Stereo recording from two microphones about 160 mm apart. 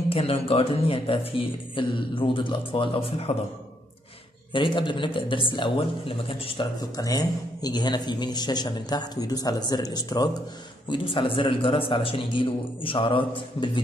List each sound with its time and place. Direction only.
0.1 s a man's voice: 35° left (ahead or behind)
4.5 s a man's voice: 30° left (ahead or behind)
7.0 s a man's voice: 25° left (ahead or behind)